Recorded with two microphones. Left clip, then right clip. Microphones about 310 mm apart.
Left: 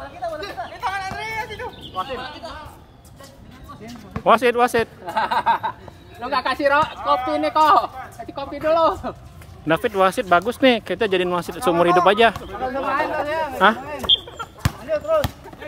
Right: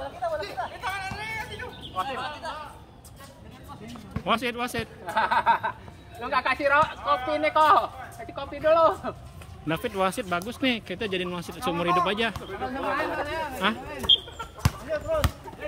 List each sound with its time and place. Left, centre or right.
0.2 s chatter: centre
0.7 s a sound: centre
3.8 s speech: centre
5.0 s a sound: left
6.2 s a woman's voice: left
9.7 s speech: centre